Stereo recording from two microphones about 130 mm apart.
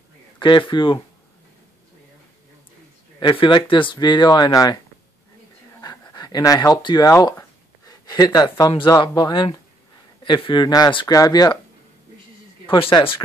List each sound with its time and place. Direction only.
0.4 s speech: 35° left (ahead or behind)
3.2 s speech: 35° left (ahead or behind)
5.8 s speech: 30° left (ahead or behind)
12.6 s speech: 40° left (ahead or behind)